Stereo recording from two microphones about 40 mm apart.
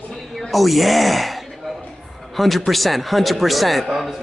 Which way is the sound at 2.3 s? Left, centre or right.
Centre.